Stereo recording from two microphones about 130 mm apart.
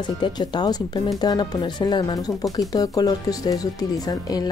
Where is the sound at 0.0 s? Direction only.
35° left (ahead or behind).